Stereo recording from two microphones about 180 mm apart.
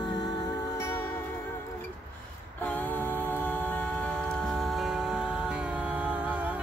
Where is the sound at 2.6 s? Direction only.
10° left (ahead or behind).